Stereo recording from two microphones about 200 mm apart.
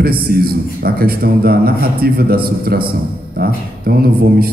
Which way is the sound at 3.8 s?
50° right (ahead or behind).